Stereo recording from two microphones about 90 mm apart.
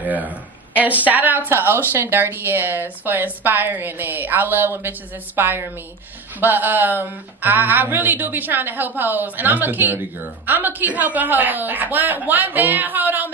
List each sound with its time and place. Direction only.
0.0 s speech: 20° right (ahead or behind)